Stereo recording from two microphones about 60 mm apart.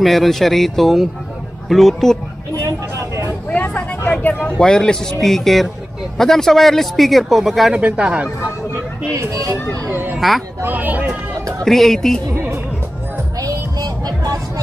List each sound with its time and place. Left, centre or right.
0.0 s a man's voice: centre
2.6 s vehicle: right
3.4 s vehicle: left
4.6 s a man's voice: centre
7.7 s speech: centre
8.7 s a sound: right
9.8 s a sound: right
10.1 s a sound: centre
10.6 s speech: right
11.6 s a man's voice: centre
13.4 s music: right